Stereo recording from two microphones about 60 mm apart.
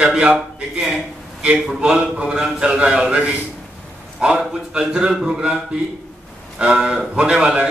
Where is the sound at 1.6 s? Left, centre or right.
Centre.